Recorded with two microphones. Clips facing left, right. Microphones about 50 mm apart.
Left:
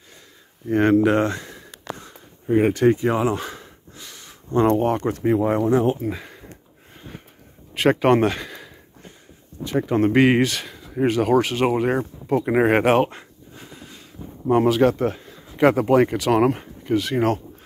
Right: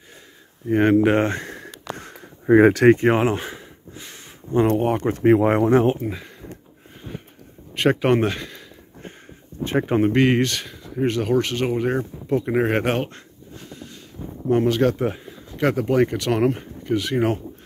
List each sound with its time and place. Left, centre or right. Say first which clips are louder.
0.7 s speech: right 1 dB; centre
0.9 s speech: even; right
1.4 s a sound: right 5 dB; right
2.4 s speech: right 4 dB; right
3.0 s speech: right 2 dB; right
3.9 s a sound: right 2 dB; right
4.5 s speech: left 1 dB; centre
5.2 s speech: right 5 dB; right
5.9 s speech: left 1 dB; centre
7.7 s speech: left 2 dB; centre
9.6 s speech: right 1 dB; right
10.1 s speech: left 2 dB; centre
15.0 s a sound: left 1 dB; centre
15.5 s speech: left 4 dB; centre